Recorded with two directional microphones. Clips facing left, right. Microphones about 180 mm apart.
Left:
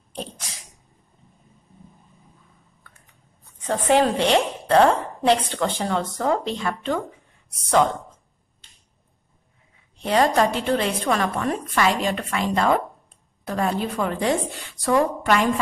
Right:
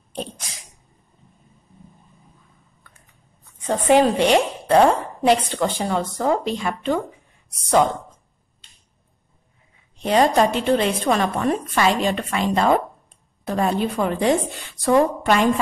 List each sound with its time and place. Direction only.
3.6 s a woman's voice: 15° right (ahead or behind)
9.9 s a woman's voice: 20° right (ahead or behind)